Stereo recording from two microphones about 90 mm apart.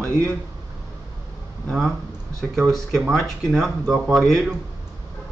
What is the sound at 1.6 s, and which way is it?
Speech, centre (ahead or behind).